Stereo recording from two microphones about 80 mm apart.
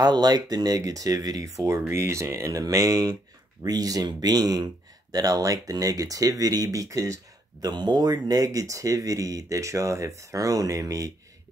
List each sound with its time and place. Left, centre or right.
0.0 s speech: right
7.6 s speech: right
8.5 s speech: right